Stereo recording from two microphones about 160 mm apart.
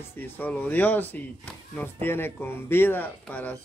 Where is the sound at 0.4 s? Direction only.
10° left (ahead or behind).